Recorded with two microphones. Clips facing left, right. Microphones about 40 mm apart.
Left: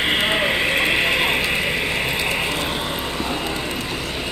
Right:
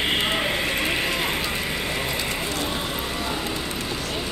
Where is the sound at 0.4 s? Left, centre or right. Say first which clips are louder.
Left 5 dB; left.